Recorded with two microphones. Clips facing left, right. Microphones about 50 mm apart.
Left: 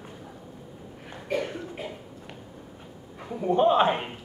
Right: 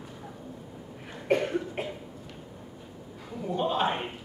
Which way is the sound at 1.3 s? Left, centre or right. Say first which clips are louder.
Right 3 dB; right.